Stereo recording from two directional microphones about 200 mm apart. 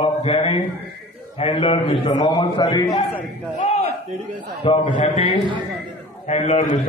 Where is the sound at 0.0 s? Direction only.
30° left (ahead or behind).